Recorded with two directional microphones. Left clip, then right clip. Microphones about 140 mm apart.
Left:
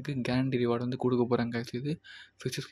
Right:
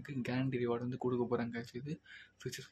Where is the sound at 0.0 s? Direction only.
35° left (ahead or behind).